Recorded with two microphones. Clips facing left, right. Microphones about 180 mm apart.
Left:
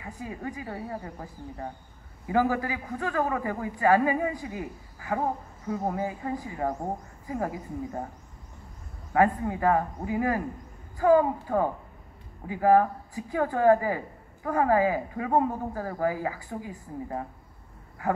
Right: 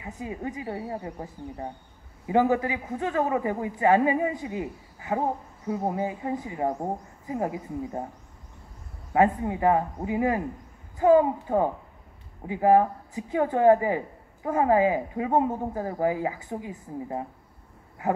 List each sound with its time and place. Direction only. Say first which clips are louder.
0.0 s speech: right 2 dB; 20° right (ahead or behind)
9.1 s speech: right 1 dB; 20° right (ahead or behind)